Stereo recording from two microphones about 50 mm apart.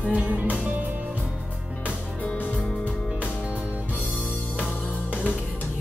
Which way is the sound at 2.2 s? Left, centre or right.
Left.